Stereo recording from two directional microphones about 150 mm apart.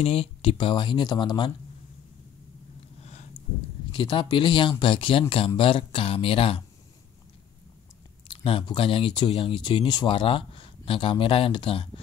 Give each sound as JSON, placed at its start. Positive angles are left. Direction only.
{"t": 0.0, "sound": "speech", "side_deg": 40}
{"t": 3.0, "sound": "a sound", "side_deg": 45}
{"t": 3.9, "sound": "speech", "side_deg": 30}
{"t": 8.3, "sound": "speech", "side_deg": 35}